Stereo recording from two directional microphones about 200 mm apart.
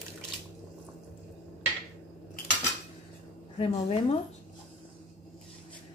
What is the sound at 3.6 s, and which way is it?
Speech, 30° left (ahead or behind).